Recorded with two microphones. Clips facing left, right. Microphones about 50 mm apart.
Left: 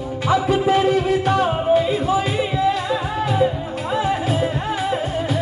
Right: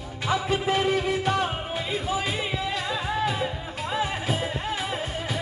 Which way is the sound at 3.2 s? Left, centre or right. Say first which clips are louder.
Left 8 dB; centre.